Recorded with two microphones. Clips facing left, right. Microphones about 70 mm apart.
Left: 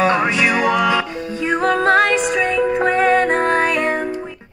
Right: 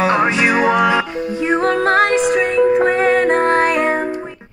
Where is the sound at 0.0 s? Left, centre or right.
Centre.